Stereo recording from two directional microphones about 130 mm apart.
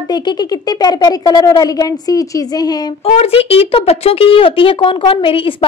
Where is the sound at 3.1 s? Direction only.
50° left (ahead or behind).